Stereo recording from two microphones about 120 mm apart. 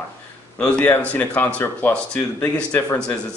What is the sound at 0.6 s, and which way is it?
Speech, 10° left (ahead or behind).